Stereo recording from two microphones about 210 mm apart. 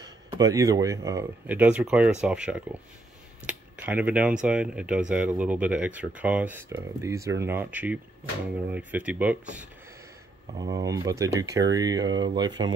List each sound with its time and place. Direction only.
0.0 s speech: 20° right (ahead or behind)